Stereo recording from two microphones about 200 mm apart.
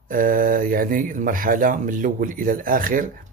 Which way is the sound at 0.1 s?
45° right (ahead or behind).